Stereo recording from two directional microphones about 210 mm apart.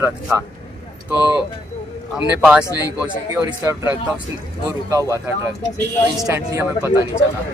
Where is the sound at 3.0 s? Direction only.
5° right (ahead or behind).